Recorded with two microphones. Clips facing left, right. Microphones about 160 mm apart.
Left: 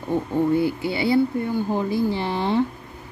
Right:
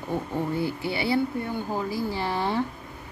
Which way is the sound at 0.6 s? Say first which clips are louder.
Left 5 dB; 20° left (ahead or behind).